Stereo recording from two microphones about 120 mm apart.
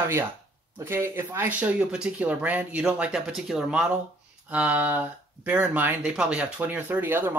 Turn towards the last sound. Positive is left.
turn(degrees=-15)  # may be behind; listen again after turning